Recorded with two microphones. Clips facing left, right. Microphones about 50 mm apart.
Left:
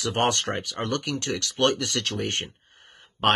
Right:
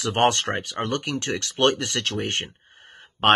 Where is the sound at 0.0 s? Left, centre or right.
Right.